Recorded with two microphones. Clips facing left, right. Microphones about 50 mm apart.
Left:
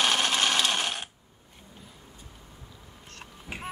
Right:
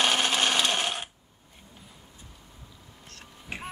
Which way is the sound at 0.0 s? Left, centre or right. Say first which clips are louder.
Right 1 dB; centre.